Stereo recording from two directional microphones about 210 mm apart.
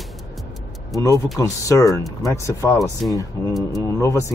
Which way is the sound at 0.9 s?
15° left (ahead or behind).